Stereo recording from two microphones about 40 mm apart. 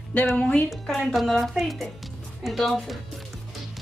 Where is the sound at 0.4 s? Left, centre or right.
Left.